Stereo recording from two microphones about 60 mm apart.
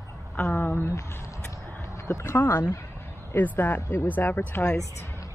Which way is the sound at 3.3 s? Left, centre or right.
Left.